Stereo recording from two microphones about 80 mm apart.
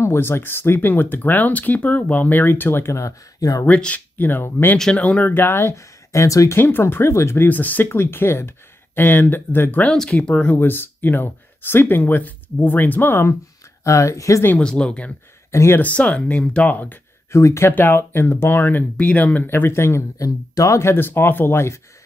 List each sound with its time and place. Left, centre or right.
0.0 s speech: left
3.6 s speech: centre
4.9 s speech: centre; by 6.6 s left
6.6 s speech: left
7.4 s speech: left
9.8 s speech: centre; by 13.4 s left
13.8 s speech: left
14.6 s speech: centre
15.5 s speech: left
15.8 s speech: centre
17.3 s speech: left
17.7 s speech: left
20.2 s speech: left
20.9 s speech: left